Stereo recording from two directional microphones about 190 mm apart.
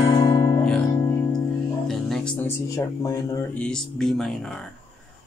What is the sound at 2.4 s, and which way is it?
Speech, 15° left (ahead or behind).